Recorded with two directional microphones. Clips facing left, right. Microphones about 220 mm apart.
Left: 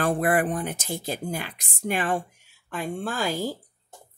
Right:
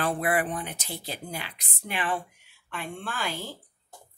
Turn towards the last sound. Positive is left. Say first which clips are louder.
# left 7 dB
turn(degrees=40)  # may be behind; listen again after turning